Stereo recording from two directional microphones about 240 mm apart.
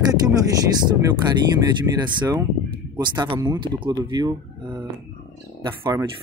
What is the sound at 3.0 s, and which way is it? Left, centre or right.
Speech, centre.